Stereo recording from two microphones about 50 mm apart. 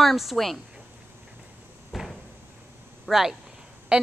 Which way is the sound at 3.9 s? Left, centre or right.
Right.